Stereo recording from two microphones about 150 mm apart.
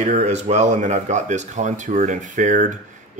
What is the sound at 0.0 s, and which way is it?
Speech, 50° right (ahead or behind).